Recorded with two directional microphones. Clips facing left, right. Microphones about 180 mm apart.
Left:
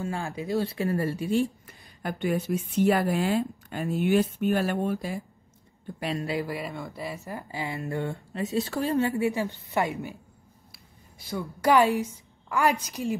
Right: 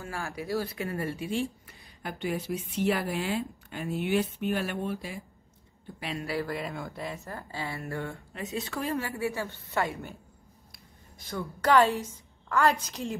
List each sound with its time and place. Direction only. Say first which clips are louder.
0.0 s a woman's voice: left 5 dB; 25° left (ahead or behind); by 6.2 s 40° left (ahead or behind)
6.2 s speech: right 1 dB; 15° left (ahead or behind)
6.5 s speech: left 1 dB; centre (ahead or behind)
7.2 s speech: left 3 dB; 15° left (ahead or behind)
8.3 s a woman's voice: left 7 dB; 35° left (ahead or behind)
9.2 s a woman's voice: left 5 dB; 15° left (ahead or behind)